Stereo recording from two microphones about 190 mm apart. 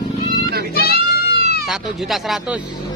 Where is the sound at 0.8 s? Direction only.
55° left (ahead or behind).